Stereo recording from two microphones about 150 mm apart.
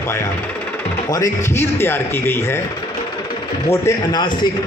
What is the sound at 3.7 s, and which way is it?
Speech, 30° left (ahead or behind).